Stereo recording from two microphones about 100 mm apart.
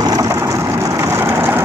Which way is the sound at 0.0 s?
35° right (ahead or behind).